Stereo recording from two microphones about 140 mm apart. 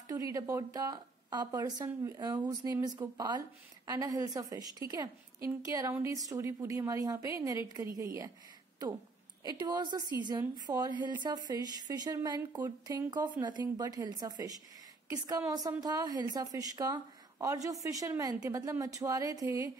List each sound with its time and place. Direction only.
0.1 s a woman's voice: 25° right (ahead or behind)
9.4 s a woman's voice: 30° right (ahead or behind)